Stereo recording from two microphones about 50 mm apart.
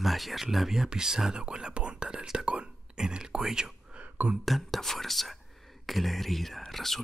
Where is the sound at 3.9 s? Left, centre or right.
Right.